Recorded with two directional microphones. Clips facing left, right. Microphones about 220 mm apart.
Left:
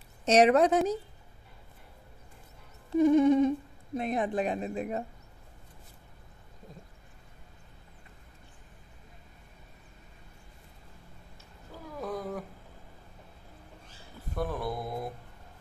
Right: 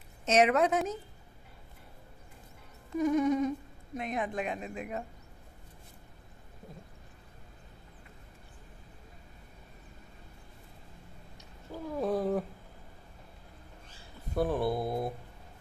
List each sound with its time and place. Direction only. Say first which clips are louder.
0.2 s speech: left 4 dB; 35° left (ahead or behind)
2.9 s speech: left 6 dB; 30° left (ahead or behind)
12.0 s speech: right 6 dB; 30° right (ahead or behind)
14.3 s speech: right 4 dB; 30° right (ahead or behind)